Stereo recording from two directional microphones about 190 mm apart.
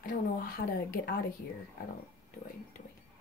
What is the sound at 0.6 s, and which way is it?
Speech, 60° left (ahead or behind).